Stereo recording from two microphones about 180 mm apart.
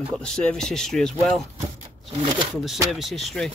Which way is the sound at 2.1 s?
30° right (ahead or behind).